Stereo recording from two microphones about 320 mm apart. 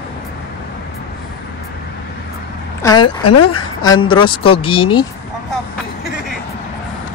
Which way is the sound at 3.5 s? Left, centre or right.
Centre.